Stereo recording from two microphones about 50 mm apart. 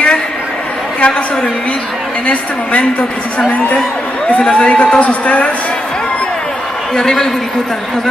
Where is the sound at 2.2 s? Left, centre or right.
Left.